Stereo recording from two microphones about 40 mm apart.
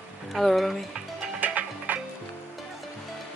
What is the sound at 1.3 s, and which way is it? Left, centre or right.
Music, right.